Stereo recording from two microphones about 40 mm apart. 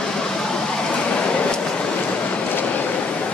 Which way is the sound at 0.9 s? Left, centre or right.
Left.